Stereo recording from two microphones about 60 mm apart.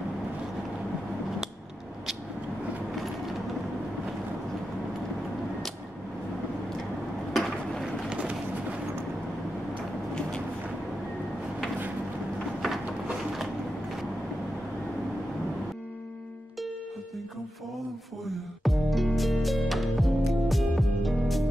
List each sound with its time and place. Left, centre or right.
8.1 s vehicle: centre
18.2 s music: centre